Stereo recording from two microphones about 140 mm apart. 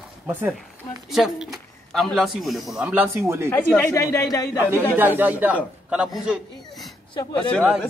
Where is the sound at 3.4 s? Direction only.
15° left (ahead or behind).